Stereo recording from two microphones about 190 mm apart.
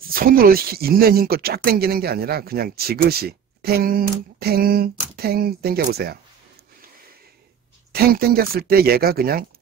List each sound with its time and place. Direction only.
0.1 s speech: 50° right (ahead or behind)
7.9 s speech: 55° right (ahead or behind)